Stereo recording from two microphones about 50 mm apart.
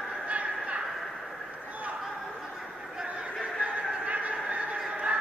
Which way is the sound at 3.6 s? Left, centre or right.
Right.